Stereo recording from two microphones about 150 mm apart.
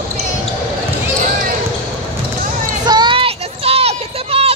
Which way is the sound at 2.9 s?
30° right (ahead or behind).